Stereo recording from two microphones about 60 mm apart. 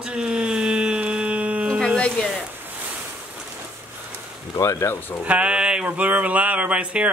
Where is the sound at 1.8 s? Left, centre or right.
Centre.